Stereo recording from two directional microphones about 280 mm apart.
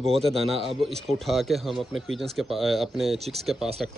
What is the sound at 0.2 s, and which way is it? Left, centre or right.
Speech, centre.